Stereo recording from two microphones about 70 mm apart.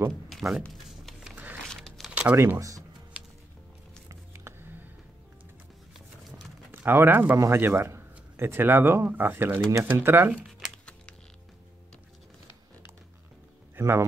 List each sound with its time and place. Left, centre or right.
0.1 s speech: centre
0.8 s a sound: centre
1.3 s a sound: right
1.7 s a sound: centre
2.0 s typing: centre
2.3 s speech: right
3.1 s music: centre
4.3 s music: right
5.9 s horse: centre
6.7 s speech: right
13.7 s speech: right